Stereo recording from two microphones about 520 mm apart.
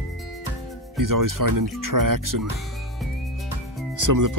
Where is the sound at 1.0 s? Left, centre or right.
Right.